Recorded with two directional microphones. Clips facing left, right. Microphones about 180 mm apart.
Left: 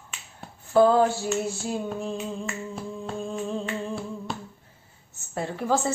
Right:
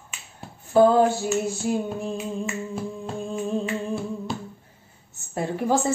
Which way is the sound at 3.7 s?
Centre (ahead or behind).